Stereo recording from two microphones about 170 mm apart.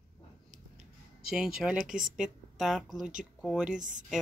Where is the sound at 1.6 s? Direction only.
Centre (ahead or behind).